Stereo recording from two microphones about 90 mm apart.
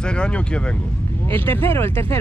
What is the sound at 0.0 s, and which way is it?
Speech, 10° left (ahead or behind).